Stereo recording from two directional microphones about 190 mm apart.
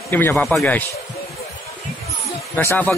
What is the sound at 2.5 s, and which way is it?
Speech, 10° left (ahead or behind).